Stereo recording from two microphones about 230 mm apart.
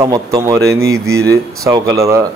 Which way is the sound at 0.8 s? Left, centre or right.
Right.